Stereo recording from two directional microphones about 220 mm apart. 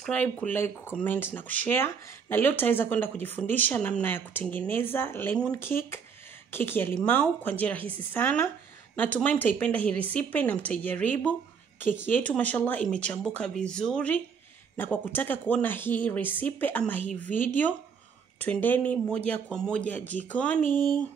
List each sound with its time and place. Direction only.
0.0 s speech: 5° left (ahead or behind)
20.6 s speech: 35° left (ahead or behind)